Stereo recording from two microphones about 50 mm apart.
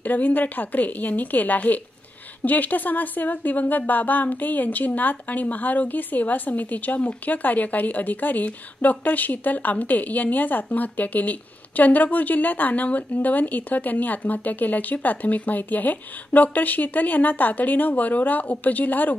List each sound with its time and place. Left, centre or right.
0.0 s speech: left